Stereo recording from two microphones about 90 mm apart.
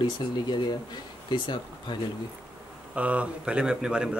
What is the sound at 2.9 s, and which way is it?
Speech, 15° right (ahead or behind).